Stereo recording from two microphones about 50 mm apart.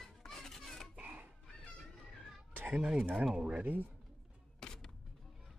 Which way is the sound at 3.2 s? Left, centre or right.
Centre.